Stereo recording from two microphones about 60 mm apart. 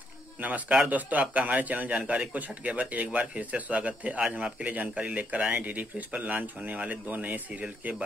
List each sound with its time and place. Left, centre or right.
0.4 s a man's voice: right